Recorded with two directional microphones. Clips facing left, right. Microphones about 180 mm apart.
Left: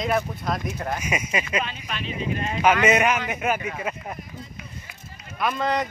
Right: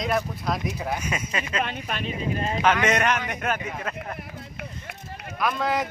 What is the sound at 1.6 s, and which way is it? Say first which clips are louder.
Speech: right 2 dB; 55° right (ahead or behind).